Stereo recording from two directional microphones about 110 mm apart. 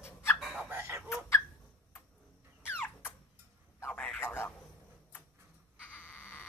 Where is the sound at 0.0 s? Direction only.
25° left (ahead or behind).